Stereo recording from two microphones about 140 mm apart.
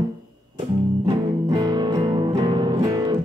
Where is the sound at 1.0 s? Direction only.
30° right (ahead or behind).